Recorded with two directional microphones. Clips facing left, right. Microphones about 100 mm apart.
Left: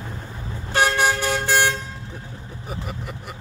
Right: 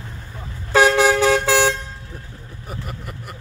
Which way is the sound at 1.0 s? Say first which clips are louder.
Right 5 dB; 90° right.